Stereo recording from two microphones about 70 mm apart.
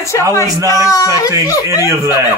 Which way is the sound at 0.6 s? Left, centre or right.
Left.